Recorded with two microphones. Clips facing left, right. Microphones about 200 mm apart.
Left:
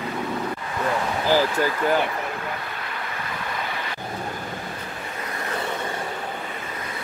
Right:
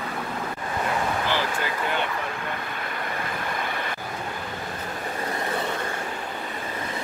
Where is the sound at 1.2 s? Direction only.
40° left (ahead or behind).